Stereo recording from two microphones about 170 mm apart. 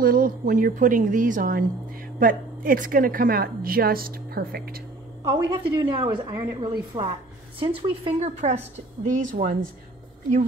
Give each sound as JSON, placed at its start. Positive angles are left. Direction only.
{"t": 0.0, "sound": "a woman's voice", "side_deg": -55}
{"t": 5.3, "sound": "a woman's voice", "side_deg": -25}